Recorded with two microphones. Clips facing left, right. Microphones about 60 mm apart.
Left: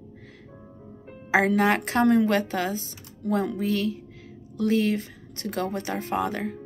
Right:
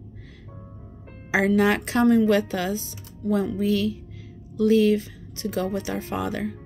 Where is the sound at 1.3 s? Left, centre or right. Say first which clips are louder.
Right 1 dB; left.